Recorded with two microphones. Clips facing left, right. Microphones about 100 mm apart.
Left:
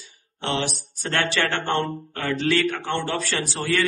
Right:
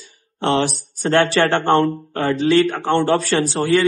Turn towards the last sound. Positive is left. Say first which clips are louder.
# right 8 dB
turn(degrees=-35)  # may be behind; listen again after turning